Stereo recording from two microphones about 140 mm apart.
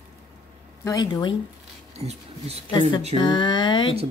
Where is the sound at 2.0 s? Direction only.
50° right (ahead or behind).